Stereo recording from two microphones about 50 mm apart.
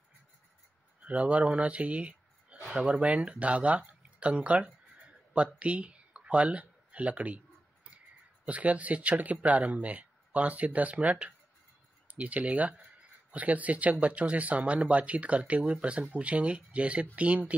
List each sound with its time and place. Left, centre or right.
1.0 s speech: right
8.5 s speech: right